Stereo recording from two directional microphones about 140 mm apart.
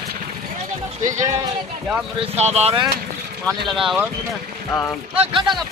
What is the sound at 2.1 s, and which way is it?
Speech, 50° right (ahead or behind).